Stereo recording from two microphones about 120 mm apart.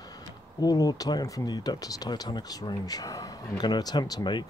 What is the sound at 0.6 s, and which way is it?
Speech, 30° left (ahead or behind).